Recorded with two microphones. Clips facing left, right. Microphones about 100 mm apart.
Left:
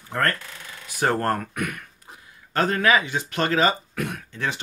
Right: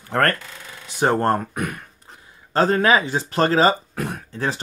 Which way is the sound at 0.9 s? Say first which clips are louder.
Right 4 dB; 25° right (ahead or behind).